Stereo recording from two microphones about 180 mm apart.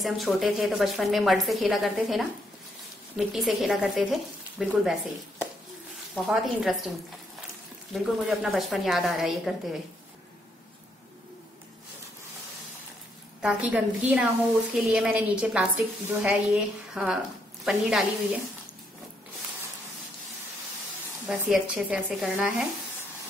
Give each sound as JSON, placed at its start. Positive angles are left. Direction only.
{"t": 0.0, "sound": "a woman's voice", "side_deg": 0}
{"t": 6.1, "sound": "a woman's voice", "side_deg": -5}
{"t": 7.9, "sound": "a woman's voice", "side_deg": 0}
{"t": 13.4, "sound": "a woman's voice", "side_deg": -5}
{"t": 21.3, "sound": "a woman's voice", "side_deg": -5}